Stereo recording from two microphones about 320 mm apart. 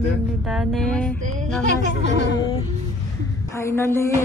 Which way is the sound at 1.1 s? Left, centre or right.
Right.